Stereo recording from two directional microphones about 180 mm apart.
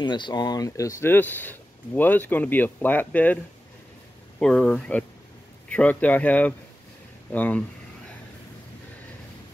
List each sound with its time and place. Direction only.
0.0 s speech: 25° left (ahead or behind); by 3.3 s 10° left (ahead or behind)
4.4 s speech: 5° left (ahead or behind)